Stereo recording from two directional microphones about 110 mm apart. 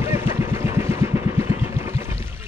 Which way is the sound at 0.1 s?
25° right (ahead or behind).